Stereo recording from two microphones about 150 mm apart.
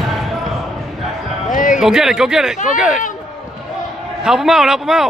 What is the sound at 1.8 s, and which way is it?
Speech, 5° right (ahead or behind).